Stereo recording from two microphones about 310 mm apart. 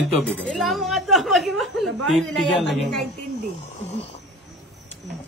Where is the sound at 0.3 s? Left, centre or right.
Centre.